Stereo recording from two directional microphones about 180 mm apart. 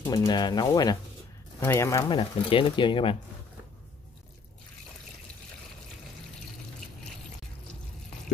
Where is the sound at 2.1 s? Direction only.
30° left (ahead or behind).